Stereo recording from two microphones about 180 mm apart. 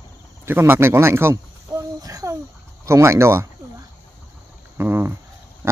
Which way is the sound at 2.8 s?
15° right (ahead or behind).